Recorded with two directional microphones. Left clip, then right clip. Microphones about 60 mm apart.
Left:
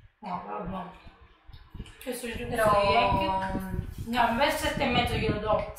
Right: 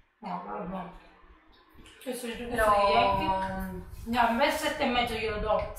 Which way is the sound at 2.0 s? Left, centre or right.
Centre.